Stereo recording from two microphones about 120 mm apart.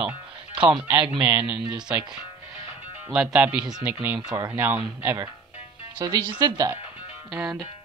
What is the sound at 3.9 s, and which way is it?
Speech, 15° right (ahead or behind).